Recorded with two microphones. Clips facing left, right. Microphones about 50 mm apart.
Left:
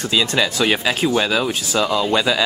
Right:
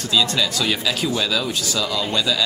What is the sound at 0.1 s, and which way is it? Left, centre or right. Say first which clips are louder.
Speech: left 1 dB; left.